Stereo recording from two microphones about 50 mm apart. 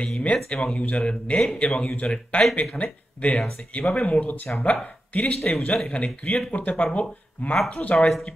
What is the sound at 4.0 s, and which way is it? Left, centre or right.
Speech, left.